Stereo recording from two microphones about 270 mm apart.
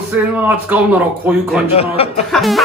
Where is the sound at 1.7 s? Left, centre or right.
Left.